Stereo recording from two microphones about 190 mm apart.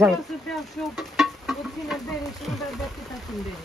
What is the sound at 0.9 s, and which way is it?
Music, centre (ahead or behind).